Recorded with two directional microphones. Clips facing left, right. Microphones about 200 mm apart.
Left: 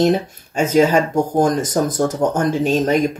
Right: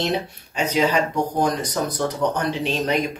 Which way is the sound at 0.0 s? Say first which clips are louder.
Left 8 dB; 45° left (ahead or behind).